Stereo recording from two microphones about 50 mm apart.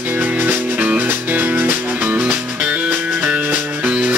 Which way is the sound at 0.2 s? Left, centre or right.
Right.